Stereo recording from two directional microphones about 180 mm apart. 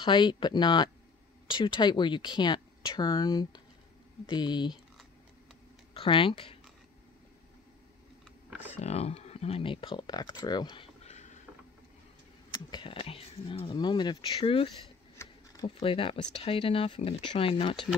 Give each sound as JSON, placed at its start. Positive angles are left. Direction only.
{"t": 0.0, "sound": "speech", "side_deg": 25}
{"t": 5.9, "sound": "speech", "side_deg": 30}
{"t": 8.8, "sound": "speech", "side_deg": 35}
{"t": 11.1, "sound": "mechanisms", "side_deg": 40}
{"t": 12.7, "sound": "speech", "side_deg": 30}
{"t": 15.1, "sound": "a sound", "side_deg": 25}
{"t": 16.4, "sound": "speech", "side_deg": 30}